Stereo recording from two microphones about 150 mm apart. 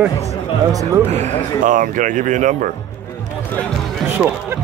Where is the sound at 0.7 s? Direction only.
25° right (ahead or behind).